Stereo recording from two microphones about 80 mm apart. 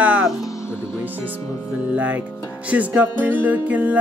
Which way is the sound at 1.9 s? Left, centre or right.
Centre.